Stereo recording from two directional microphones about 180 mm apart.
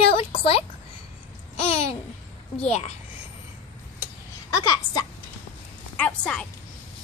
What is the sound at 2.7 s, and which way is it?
Speech, 35° left (ahead or behind).